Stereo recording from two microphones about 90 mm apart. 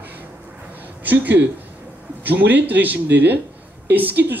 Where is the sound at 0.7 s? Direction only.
20° right (ahead or behind).